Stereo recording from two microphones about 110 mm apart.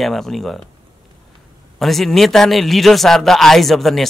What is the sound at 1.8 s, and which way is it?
Speech, centre (ahead or behind).